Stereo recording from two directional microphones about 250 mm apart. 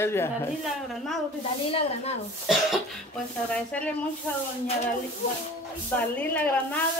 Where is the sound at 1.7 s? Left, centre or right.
Left.